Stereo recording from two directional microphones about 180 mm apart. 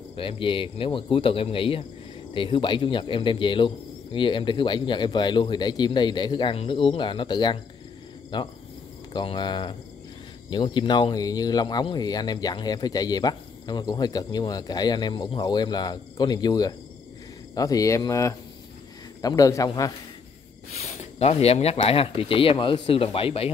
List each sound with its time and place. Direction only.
0.1 s speech: 30° left (ahead or behind)
20.7 s speech: 35° left (ahead or behind)